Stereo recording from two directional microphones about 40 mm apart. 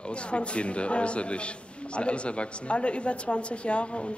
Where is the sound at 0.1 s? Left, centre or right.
Left.